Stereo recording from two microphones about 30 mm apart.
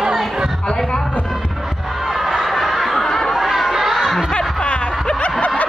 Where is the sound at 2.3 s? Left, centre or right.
Centre.